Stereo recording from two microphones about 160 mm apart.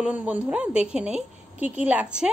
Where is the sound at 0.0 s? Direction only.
10° right (ahead or behind).